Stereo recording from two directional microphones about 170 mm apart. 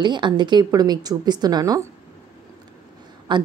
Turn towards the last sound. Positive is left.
turn(degrees=-25)  # may be behind; listen again after turning